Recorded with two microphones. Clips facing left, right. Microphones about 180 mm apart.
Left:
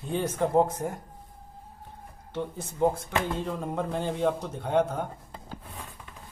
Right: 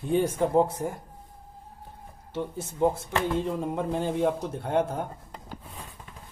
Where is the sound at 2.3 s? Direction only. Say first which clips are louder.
Right 1 dB; 5° right (ahead or behind).